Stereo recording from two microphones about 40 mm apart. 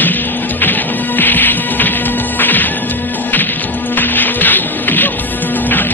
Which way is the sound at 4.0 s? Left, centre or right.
Left.